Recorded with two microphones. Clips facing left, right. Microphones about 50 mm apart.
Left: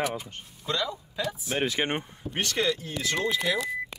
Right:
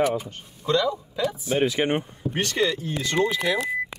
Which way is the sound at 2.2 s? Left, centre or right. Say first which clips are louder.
Right 3 dB; right.